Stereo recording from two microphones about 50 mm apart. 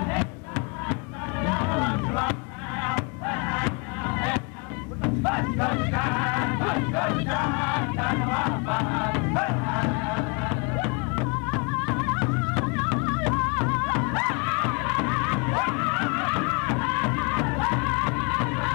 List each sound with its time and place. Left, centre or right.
0.0 s music: centre